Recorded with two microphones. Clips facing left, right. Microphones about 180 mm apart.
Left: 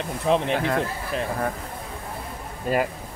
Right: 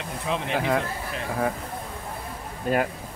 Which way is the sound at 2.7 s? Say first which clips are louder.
Even; 5° left (ahead or behind).